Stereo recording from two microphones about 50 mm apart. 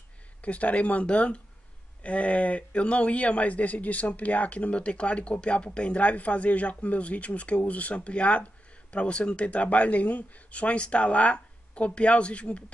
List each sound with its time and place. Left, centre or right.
0.4 s speech: left